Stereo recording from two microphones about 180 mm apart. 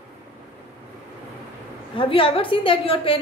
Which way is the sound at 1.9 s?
30° left (ahead or behind).